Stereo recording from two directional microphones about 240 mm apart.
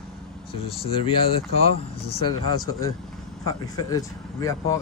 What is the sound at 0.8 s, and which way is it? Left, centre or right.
Speech, left.